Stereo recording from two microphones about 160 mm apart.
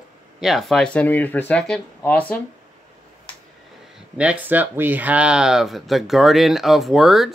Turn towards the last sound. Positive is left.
turn(degrees=0)  # may be behind; listen again after turning